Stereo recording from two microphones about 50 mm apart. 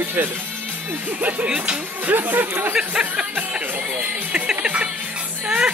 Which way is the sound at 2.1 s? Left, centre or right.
Right.